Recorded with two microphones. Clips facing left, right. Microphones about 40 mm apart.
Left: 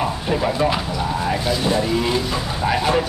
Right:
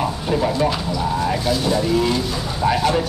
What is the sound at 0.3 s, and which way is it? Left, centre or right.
Speech, centre.